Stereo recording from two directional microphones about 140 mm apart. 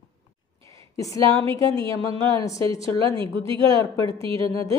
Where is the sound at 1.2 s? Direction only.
40° right (ahead or behind).